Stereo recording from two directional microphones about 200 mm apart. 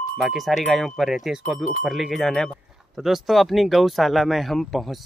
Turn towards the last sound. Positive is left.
turn(degrees=0)  # may be behind; listen again after turning